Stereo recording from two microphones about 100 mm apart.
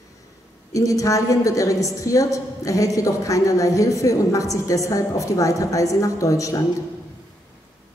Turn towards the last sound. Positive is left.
turn(degrees=35)  # may be behind; listen again after turning